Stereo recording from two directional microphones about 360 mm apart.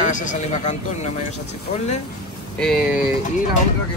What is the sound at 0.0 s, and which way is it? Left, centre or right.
Speech, left.